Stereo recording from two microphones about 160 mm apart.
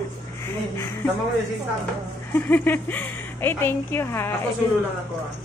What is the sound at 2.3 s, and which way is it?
A woman's voice, 10° left (ahead or behind).